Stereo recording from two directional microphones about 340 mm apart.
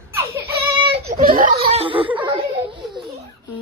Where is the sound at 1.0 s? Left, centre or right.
Right.